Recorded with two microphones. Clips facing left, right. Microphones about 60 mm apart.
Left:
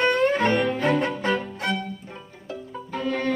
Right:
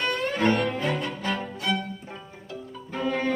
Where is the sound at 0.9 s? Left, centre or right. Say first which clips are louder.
Left 6 dB; left.